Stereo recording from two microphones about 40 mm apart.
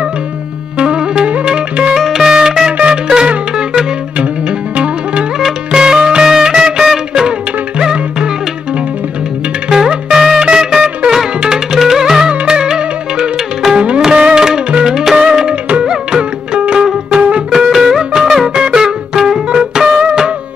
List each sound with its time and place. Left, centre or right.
0.7 s music: right
2.0 s music: centre
9.7 s music: centre
17.5 s music: centre
19.5 s music: right